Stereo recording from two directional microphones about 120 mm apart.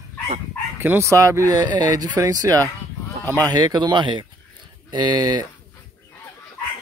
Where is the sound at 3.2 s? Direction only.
15° left (ahead or behind).